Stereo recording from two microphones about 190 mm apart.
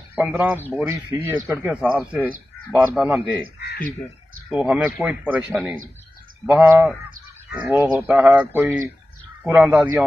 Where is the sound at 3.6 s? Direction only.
60° left (ahead or behind).